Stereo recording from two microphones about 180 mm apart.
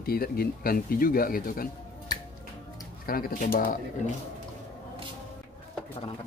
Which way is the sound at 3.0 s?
55° left (ahead or behind).